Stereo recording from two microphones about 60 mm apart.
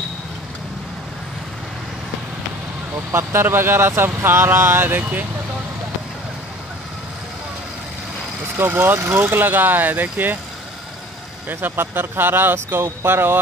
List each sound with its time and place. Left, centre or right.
3.1 s speech: right
8.8 s speech: right
11.4 s speech: right